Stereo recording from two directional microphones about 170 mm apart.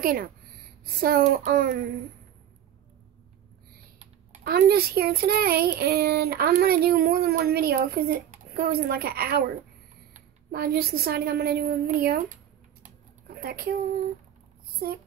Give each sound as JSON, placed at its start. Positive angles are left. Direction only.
{"t": 0.0, "sound": "speech", "side_deg": -60}
{"t": 1.3, "sound": "speech", "side_deg": -55}
{"t": 4.5, "sound": "speech", "side_deg": -65}
{"t": 10.5, "sound": "speech", "side_deg": -65}
{"t": 12.8, "sound": "a sound", "side_deg": -60}